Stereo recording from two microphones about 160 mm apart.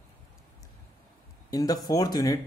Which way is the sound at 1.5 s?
25° left (ahead or behind).